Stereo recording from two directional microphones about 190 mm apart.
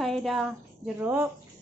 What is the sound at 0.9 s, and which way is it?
Speech, 10° right (ahead or behind).